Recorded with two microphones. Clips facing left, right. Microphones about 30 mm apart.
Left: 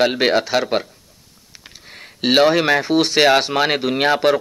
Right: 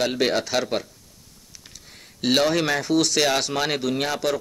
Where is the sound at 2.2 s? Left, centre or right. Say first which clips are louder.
Left 6 dB; left.